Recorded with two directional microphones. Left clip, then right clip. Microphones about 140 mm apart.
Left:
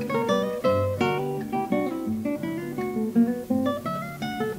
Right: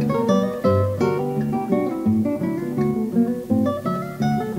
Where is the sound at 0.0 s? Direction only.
50° right (ahead or behind).